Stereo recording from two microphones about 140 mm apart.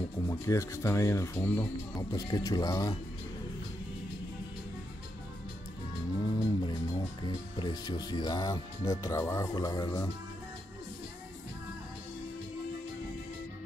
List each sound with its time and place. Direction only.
0.3 s speech: 20° left (ahead or behind)
6.4 s music: 35° left (ahead or behind)
9.0 s speech: 20° left (ahead or behind)